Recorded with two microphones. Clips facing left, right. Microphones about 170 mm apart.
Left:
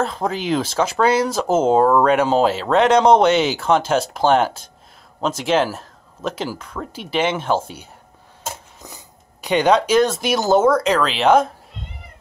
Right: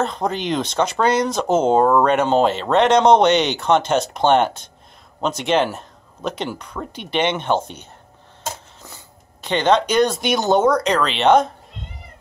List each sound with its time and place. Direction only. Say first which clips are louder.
0.0 s speech: even; 5° left (ahead or behind)